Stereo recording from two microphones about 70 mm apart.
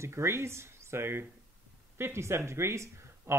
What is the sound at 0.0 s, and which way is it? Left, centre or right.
Speech, right.